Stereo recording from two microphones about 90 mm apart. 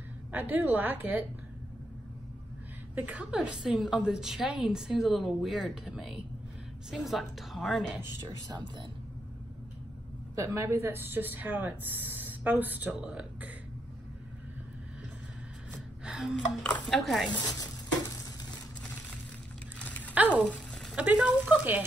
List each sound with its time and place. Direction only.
0.3 s speech: 20° right (ahead or behind)
3.0 s a woman's voice: 15° right (ahead or behind); by 7.8 s centre (ahead or behind)
8.3 s speech: 50° right (ahead or behind)
10.3 s speech: 35° right (ahead or behind); by 13.5 s 15° right (ahead or behind)
16.0 s music: 10° right (ahead or behind)
16.6 s dishes: 15° left (ahead or behind)
17.0 s a woman's voice: centre (ahead or behind)
17.3 s speech: 50° left (ahead or behind)
18.8 s a sound: 15° left (ahead or behind)
20.2 s speech: 20° right (ahead or behind)